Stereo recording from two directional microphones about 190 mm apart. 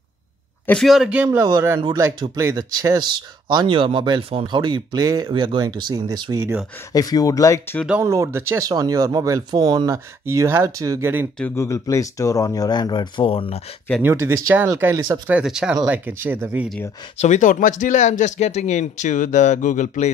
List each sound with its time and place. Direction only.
0.7 s speech: centre (ahead or behind); by 6.6 s 20° right (ahead or behind)
6.9 s speech: 20° left (ahead or behind)
8.0 s speech: 15° right (ahead or behind)
11.3 s speech: 10° left (ahead or behind); by 13.6 s 30° left (ahead or behind)
14.0 s speech: 15° right (ahead or behind)
17.2 s speech: 40° left (ahead or behind)